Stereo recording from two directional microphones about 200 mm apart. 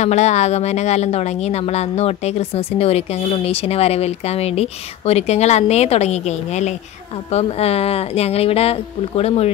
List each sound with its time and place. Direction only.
0.0 s a woman's voice: 35° left (ahead or behind)